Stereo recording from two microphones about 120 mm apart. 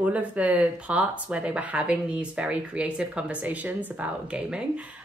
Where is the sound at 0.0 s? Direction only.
10° right (ahead or behind).